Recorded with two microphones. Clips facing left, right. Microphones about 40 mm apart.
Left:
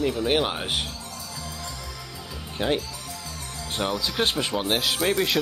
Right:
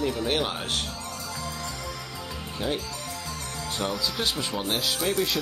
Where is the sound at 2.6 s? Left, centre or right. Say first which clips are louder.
Left 5 dB; left.